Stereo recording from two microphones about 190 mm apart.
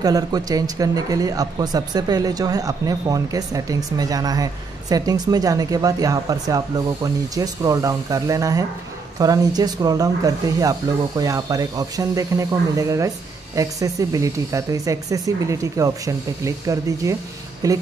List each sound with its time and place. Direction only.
0.0 s speech: 20° right (ahead or behind)